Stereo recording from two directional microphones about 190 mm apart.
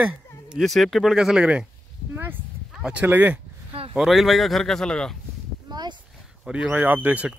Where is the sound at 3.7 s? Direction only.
30° right (ahead or behind).